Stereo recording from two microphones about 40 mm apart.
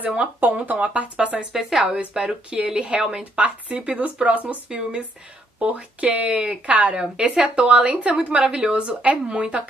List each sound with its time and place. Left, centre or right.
0.4 s speech: right
0.8 s speech: right
1.5 s a woman's voice: centre
1.8 s a woman's voice: right
3.3 s speech: right
4.6 s a woman's voice: centre
5.6 s speech: right
7.2 s a woman's voice: right